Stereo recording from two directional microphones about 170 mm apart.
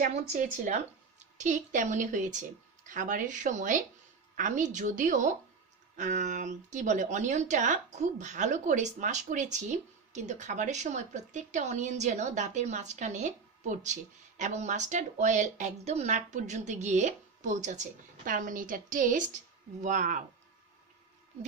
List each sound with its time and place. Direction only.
0.1 s a woman's voice: 45° right (ahead or behind)